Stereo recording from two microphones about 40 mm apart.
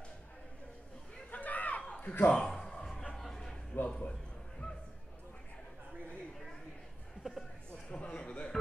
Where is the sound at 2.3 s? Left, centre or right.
Centre.